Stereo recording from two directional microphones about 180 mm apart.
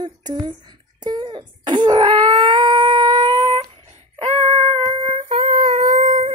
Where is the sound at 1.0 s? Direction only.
25° right (ahead or behind).